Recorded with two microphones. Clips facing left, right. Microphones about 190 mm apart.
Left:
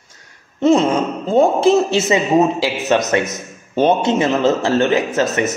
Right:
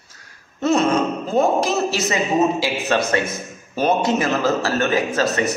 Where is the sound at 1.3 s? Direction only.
30° left (ahead or behind).